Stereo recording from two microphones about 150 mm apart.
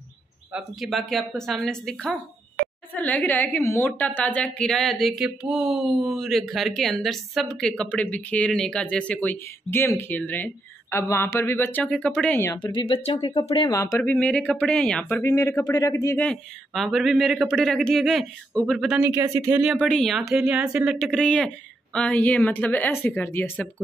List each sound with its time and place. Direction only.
0.5 s a woman's voice: 5° right (ahead or behind)
12.7 s speech: 35° left (ahead or behind)
13.7 s speech: 20° left (ahead or behind)
14.1 s a woman's voice: 10° left (ahead or behind)
15.2 s speech: 20° left (ahead or behind)
16.2 s speech: 5° left (ahead or behind)
19.0 s speech: 15° right (ahead or behind)
19.8 s a woman's voice: 5° left (ahead or behind)